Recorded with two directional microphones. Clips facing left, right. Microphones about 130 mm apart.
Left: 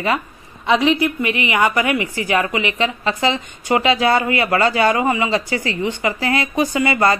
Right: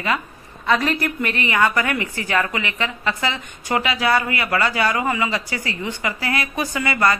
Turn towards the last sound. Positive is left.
turn(degrees=25)  # may be behind; listen again after turning